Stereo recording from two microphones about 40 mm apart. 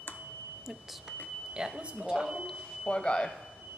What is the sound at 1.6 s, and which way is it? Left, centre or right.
Speech, right.